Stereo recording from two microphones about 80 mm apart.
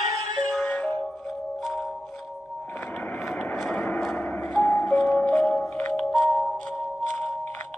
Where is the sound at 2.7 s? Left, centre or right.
Centre.